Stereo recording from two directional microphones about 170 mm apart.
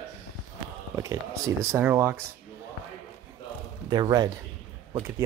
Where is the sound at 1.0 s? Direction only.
20° right (ahead or behind).